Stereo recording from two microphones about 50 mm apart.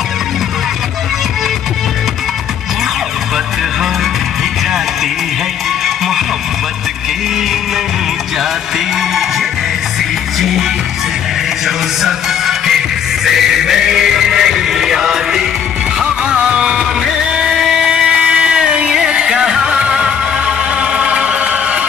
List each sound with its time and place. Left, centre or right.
11.6 s music: centre
16.3 s music: right
17.4 s vehicle: centre
17.8 s music: centre